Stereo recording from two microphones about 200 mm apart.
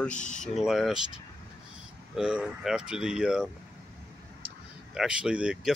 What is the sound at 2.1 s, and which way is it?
Speech, 5° right (ahead or behind).